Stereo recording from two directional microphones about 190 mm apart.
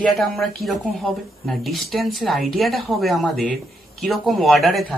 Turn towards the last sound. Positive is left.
turn(degrees=0)  # may be behind; listen again after turning